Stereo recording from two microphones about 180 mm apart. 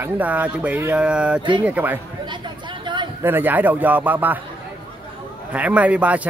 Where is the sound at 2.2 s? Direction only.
25° right (ahead or behind).